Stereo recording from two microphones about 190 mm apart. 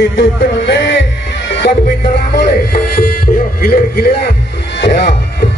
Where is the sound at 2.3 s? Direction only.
50° left (ahead or behind).